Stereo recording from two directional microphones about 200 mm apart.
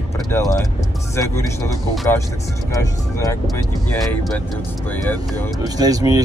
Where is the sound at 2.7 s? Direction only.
15° left (ahead or behind).